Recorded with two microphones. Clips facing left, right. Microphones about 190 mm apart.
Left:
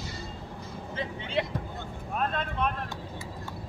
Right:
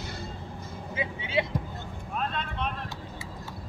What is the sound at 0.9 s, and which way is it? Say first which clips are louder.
Vehicle: right 1 dB; 10° right (ahead or behind).